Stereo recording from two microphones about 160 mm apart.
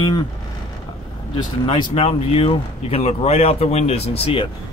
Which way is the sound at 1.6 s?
35° left (ahead or behind).